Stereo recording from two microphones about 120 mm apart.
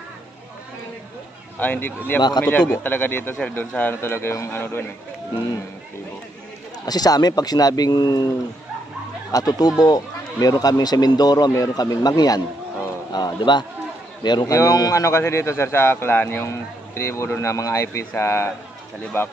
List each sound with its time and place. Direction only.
1.6 s a man's voice: 15° left (ahead or behind)
6.9 s speech: 35° left (ahead or behind)
9.3 s a man's voice: 30° left (ahead or behind)